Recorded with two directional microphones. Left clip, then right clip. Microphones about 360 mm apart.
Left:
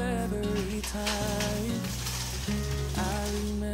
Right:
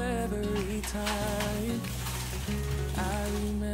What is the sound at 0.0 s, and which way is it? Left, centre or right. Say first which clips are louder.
Music: even; centre.